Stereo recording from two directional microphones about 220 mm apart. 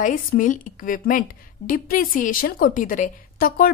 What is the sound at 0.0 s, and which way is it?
A woman's voice, 35° left (ahead or behind).